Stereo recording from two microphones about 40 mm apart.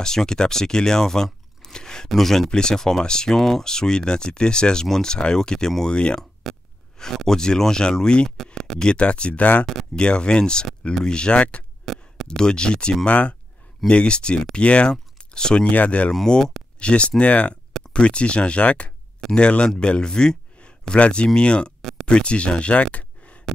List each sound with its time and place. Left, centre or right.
0.0 s speech: centre
2.0 s speech: centre
2.5 s speech: centre
3.3 s speech: centre; by 6.2 s left
6.4 s gasp: centre
7.2 s speech: centre; by 9.7 s left
9.9 s speech: left
11.3 s speech: left
11.8 s a sound: centre
12.3 s speech: left
13.0 s speech: left
15.6 s speech: left
16.1 s speech: centre
16.8 s speech: left